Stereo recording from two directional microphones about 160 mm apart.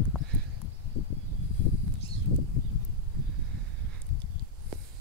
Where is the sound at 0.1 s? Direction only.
Centre (ahead or behind).